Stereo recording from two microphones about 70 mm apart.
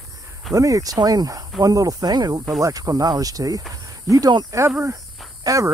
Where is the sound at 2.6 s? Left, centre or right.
Right.